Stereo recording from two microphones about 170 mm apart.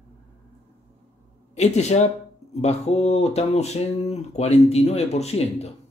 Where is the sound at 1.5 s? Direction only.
40° left (ahead or behind).